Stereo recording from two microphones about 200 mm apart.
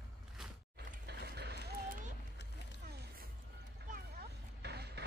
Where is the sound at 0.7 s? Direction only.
55° right (ahead or behind).